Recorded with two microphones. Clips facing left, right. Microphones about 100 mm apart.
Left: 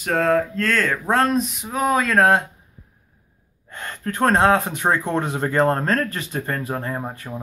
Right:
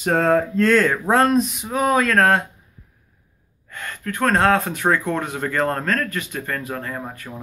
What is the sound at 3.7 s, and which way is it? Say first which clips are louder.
Speech: left 1 dB; 30° left (ahead or behind).